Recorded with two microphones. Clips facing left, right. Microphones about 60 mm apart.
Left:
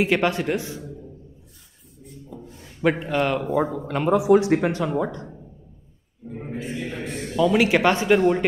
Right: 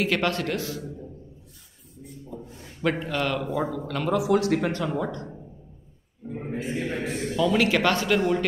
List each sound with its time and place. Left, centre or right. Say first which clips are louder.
0.0 s speech: left 4 dB; centre
2.8 s speech: left 4 dB; centre
3.4 s speech: left 4 dB; left
6.2 s a man's voice: right 1 dB; centre
6.7 s speech: right 3 dB; right
7.0 s a man's voice: right 2 dB; centre
7.3 s speech: left 4 dB; centre